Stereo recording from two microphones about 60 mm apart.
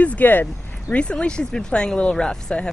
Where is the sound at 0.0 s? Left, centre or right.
Left.